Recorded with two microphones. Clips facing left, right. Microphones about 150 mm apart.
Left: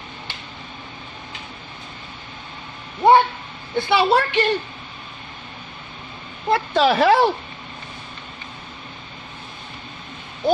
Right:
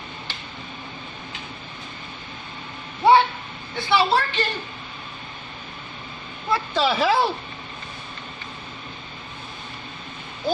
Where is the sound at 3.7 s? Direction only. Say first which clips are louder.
Left 3 dB; 60° left (ahead or behind).